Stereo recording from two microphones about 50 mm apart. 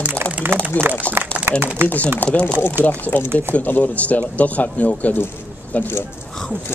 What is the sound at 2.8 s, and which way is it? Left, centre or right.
Speech, left.